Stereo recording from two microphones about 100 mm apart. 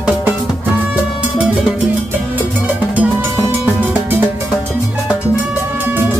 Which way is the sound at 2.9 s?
15° right (ahead or behind).